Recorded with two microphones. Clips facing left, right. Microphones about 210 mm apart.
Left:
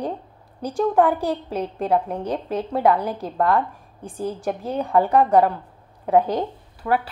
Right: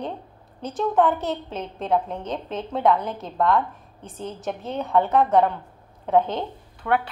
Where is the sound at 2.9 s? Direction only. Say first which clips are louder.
Left 3 dB; 35° left (ahead or behind).